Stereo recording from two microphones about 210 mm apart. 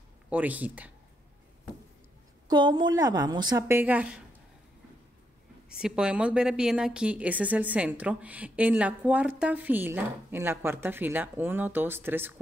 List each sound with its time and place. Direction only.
0.3 s a woman's voice: 5° right (ahead or behind)
2.4 s a woman's voice: 20° right (ahead or behind)
5.8 s a woman's voice: 5° right (ahead or behind)